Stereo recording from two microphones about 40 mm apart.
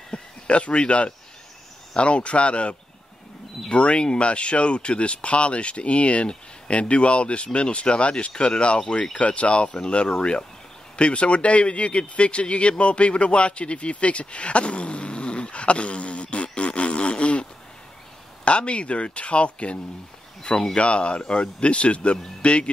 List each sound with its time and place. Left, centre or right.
0.1 s speech: left